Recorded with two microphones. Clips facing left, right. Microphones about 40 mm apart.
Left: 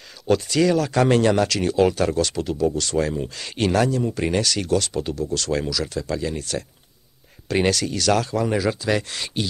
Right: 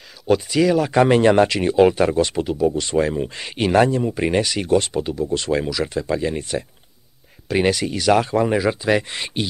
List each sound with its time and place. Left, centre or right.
0.3 s speech: centre; by 4.0 s right
4.0 s speech: centre
5.0 s speech: centre
7.4 s speech: centre
7.7 s speech: centre